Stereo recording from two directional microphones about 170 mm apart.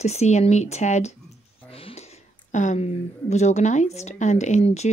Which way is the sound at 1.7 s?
35° left (ahead or behind).